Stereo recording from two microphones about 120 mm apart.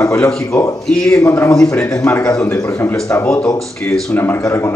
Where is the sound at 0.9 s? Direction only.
5° left (ahead or behind).